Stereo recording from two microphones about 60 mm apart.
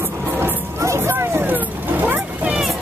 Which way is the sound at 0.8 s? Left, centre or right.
Right.